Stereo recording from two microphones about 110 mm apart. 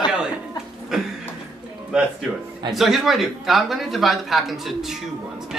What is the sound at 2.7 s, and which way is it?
A man's voice, centre (ahead or behind).